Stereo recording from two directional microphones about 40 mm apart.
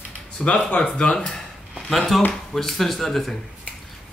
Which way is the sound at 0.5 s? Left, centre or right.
Left.